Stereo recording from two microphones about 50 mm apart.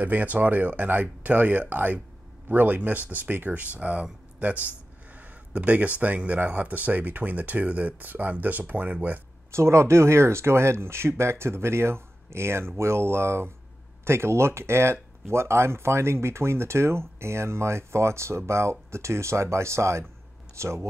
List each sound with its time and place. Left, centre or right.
0.0 s speech: right
9.5 s speech: right